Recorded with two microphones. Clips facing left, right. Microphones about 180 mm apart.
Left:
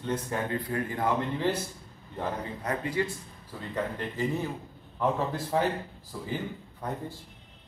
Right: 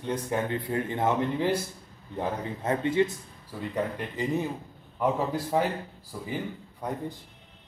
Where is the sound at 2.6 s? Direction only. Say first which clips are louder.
Right 6 dB; 25° right (ahead or behind); by 6.3 s 10° right (ahead or behind).